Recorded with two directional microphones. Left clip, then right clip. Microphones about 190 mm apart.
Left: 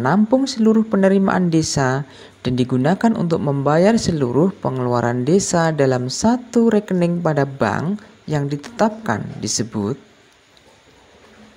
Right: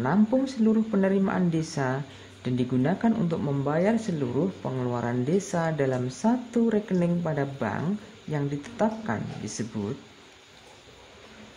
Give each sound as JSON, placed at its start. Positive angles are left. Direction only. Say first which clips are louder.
{"t": 0.0, "sound": "speech", "louder": "left 8 dB", "side_deg": 25}